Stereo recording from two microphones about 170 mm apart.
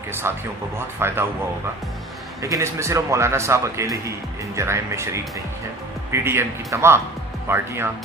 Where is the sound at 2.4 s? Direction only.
20° right (ahead or behind).